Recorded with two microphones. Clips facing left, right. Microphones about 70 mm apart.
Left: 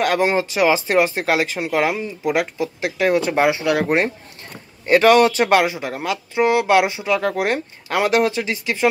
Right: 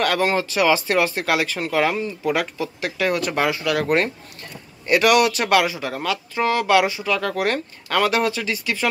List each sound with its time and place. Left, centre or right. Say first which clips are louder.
0.0 s speech: left 2 dB; centre
4.8 s speech: left 4 dB; left